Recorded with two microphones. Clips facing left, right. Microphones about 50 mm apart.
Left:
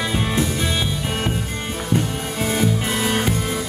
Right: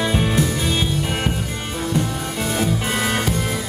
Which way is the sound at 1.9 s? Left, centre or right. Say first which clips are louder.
Left 2 dB; left.